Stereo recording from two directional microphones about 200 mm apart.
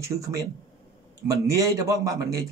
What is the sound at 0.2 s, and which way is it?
Speech, 15° right (ahead or behind).